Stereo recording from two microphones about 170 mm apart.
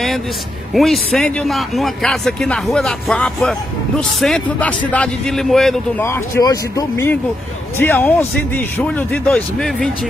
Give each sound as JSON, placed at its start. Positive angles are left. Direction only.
{"t": 0.7, "sound": "speech", "side_deg": 0}
{"t": 6.0, "sound": "a man's voice", "side_deg": 15}